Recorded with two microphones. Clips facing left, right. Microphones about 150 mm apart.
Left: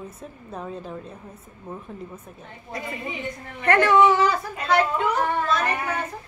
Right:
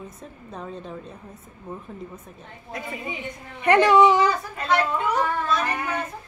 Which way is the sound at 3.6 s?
15° right (ahead or behind).